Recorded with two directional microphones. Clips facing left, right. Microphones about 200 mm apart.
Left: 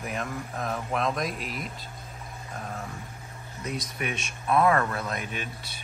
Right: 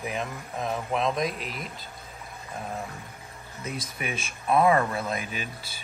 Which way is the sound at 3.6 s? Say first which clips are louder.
Left 1 dB; 5° right (ahead or behind).